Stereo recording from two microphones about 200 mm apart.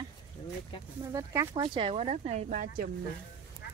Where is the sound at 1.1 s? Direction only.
15° right (ahead or behind); by 2.8 s 40° right (ahead or behind).